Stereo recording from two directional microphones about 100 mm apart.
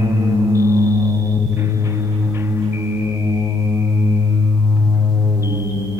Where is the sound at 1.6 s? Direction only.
30° right (ahead or behind).